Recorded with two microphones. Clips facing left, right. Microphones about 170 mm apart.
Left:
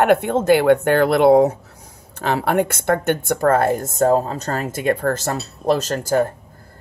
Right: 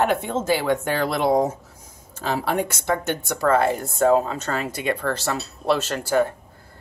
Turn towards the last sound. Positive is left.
turn(degrees=40)  # may be behind; listen again after turning